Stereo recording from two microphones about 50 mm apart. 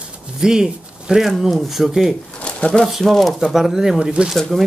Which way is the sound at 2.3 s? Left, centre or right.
Left.